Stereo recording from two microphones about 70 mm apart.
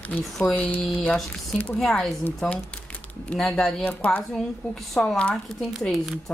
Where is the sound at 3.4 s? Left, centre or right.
Centre.